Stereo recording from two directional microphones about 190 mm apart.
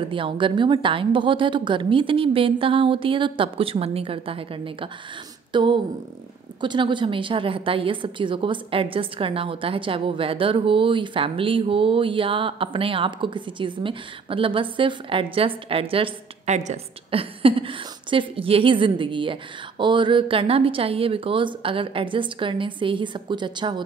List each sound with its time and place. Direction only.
0.1 s a woman's voice: 25° right (ahead or behind)
5.5 s a sound: 25° right (ahead or behind)
6.6 s a woman's voice: 25° right (ahead or behind)